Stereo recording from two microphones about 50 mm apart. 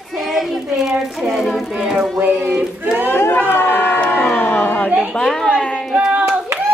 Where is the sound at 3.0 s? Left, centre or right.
Left.